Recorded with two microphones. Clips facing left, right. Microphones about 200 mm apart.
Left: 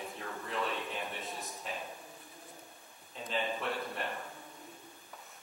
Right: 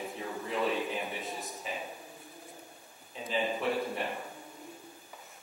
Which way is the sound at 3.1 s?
Centre (ahead or behind).